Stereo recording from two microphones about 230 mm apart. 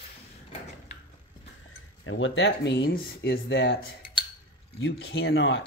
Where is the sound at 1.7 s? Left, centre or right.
Left.